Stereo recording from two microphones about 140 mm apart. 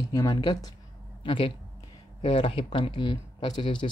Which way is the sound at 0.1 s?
25° left (ahead or behind).